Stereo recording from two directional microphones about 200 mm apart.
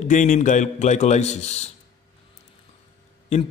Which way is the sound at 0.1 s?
40° left (ahead or behind).